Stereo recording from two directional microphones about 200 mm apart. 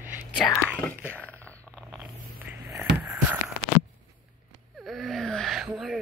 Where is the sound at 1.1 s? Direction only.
10° left (ahead or behind).